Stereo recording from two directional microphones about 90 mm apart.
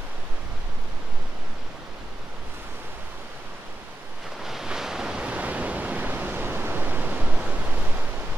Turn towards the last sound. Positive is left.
turn(degrees=-15)  # may be behind; listen again after turning